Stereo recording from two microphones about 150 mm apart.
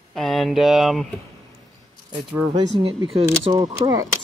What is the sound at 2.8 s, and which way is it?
Speech, 35° right (ahead or behind).